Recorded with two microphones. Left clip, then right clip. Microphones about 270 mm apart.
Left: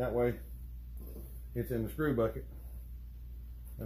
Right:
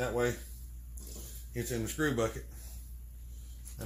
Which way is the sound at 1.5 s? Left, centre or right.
Right.